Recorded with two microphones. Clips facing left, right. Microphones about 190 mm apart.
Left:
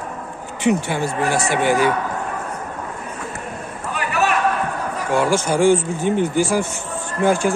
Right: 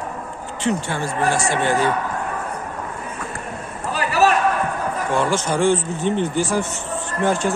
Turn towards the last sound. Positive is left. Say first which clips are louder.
# left 2 dB
turn(degrees=10)  # may be behind; listen again after turning